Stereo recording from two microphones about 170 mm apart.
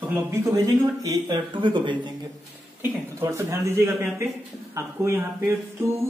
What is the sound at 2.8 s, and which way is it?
Speech, 15° right (ahead or behind).